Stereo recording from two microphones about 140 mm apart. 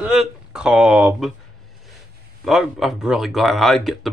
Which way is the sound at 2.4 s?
Centre (ahead or behind).